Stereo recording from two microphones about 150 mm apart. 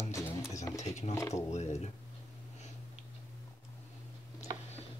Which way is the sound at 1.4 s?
45° left (ahead or behind).